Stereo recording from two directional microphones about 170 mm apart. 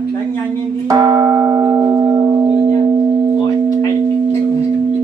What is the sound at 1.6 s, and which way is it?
Music, 15° right (ahead or behind).